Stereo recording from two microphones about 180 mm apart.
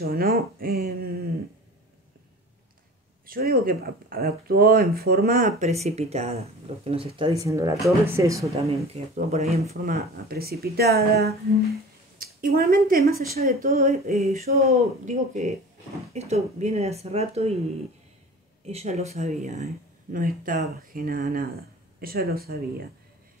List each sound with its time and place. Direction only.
0.0 s speech: 55° right (ahead or behind)
3.3 s speech: 55° right (ahead or behind)
5.6 s speech: 35° right (ahead or behind)
7.4 s speech: 15° right (ahead or behind)
8.9 s speech: 35° right (ahead or behind)
9.8 s speech: 55° right (ahead or behind); by 17.6 s 35° right (ahead or behind)
18.7 s speech: 35° right (ahead or behind); by 22.8 s 55° right (ahead or behind)